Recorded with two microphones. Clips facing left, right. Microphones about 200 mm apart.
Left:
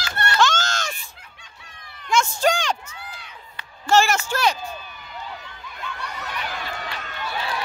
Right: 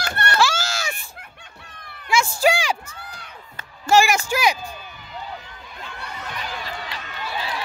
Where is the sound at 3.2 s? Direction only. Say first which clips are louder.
Right 1 dB; 45° right (ahead or behind).